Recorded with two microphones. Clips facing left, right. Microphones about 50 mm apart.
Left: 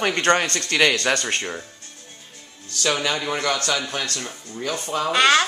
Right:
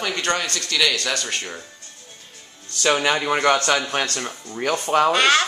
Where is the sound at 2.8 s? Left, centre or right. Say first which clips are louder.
Right 3 dB; right.